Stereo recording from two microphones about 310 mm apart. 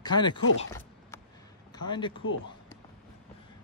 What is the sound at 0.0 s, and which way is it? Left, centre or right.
Speech, centre.